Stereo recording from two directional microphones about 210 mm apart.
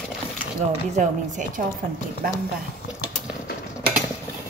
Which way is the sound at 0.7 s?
35° right (ahead or behind).